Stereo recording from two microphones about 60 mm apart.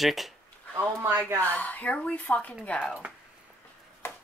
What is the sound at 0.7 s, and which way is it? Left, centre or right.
Speech, right.